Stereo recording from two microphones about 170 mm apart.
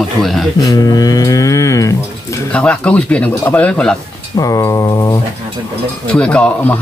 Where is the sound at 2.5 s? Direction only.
5° left (ahead or behind).